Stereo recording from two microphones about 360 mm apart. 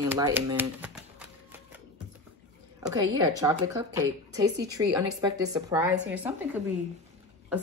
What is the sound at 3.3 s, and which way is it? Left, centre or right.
A woman's voice, centre.